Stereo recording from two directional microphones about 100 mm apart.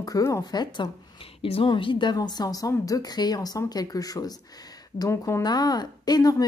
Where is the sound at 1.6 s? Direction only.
55° left (ahead or behind); by 4.3 s 40° left (ahead or behind).